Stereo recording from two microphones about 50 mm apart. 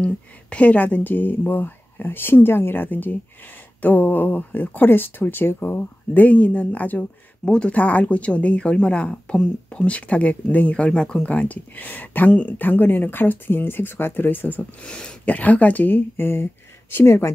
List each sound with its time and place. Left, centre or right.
0.0 s speech: left
5.8 s speech: left; by 11.2 s centre
11.2 s speech: left
14.8 s speech: centre
15.2 s speech: left
16.9 s speech: left